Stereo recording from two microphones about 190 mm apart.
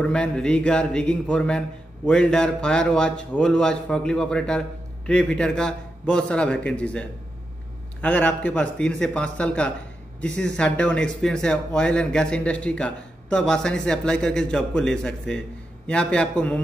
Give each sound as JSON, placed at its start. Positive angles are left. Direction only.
{"t": 0.0, "sound": "speech", "side_deg": 5}